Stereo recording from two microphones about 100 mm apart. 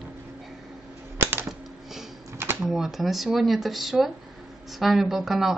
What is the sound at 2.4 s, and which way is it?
Typing, 25° right (ahead or behind).